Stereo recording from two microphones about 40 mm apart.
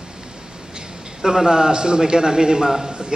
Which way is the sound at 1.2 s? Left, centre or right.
Centre.